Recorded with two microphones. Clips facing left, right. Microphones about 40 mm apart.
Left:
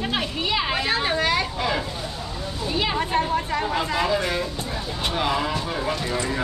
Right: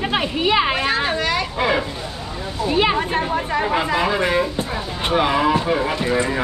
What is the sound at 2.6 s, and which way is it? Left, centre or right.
Speech, right.